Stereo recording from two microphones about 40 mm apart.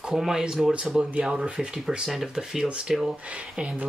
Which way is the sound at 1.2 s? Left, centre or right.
Right.